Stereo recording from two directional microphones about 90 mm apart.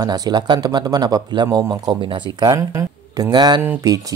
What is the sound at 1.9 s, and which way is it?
Speech, 65° right (ahead or behind).